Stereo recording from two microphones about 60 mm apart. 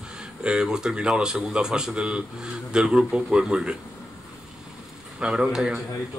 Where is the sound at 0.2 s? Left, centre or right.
Centre.